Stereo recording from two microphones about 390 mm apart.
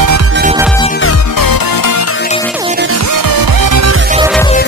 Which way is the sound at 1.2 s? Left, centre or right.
Left.